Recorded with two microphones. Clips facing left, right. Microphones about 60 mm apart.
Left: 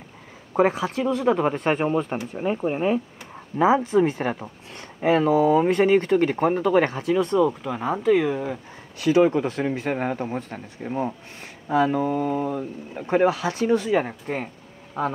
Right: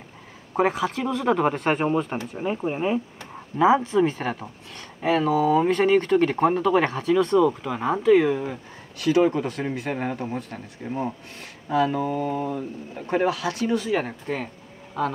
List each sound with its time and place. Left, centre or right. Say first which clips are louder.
0.6 s speech: left 2 dB; left
1.7 s speech: even; centre
3.2 s speech: even; left
7.6 s speech: right 1 dB; centre
8.3 s speech: right 1 dB; centre
8.9 s speech: left 2 dB; left
11.4 s speech: left 1 dB; left
11.9 s speech: left 2 dB; centre
13.0 s speech: left 3 dB; left
14.2 s speech: even; centre